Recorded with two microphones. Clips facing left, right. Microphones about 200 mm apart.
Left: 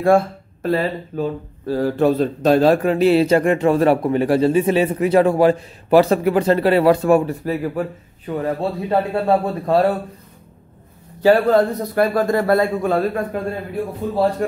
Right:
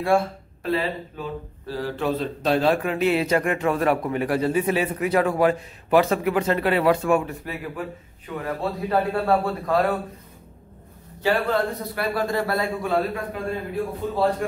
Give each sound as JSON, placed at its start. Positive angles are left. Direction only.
{"t": 0.0, "sound": "speech", "side_deg": 45}
{"t": 8.8, "sound": "a man's voice", "side_deg": 25}
{"t": 11.2, "sound": "a man's voice", "side_deg": 40}